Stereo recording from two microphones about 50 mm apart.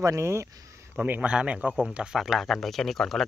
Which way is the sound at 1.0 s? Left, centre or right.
Right.